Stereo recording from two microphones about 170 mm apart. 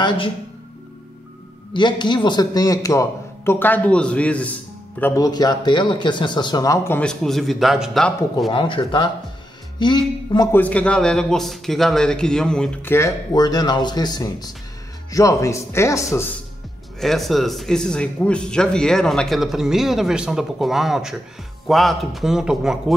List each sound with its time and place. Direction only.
1.7 s speech: 25° left (ahead or behind); by 4.5 s 10° left (ahead or behind)
5.0 s speech: 20° left (ahead or behind); by 8.5 s centre (ahead or behind)
8.5 s speech: 30° left (ahead or behind)
10.5 s speech: 10° left (ahead or behind)
17.0 s speech: centre (ahead or behind)